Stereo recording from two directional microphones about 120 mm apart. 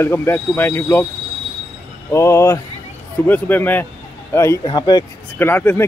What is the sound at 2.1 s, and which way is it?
A man's voice, 25° left (ahead or behind).